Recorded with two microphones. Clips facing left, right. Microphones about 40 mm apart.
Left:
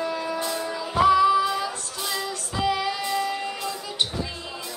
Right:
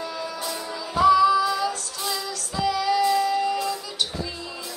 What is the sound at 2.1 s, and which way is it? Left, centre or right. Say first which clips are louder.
Child singing: left 2 dB; left.